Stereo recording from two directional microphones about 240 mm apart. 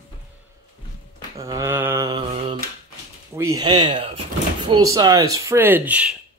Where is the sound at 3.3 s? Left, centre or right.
Centre.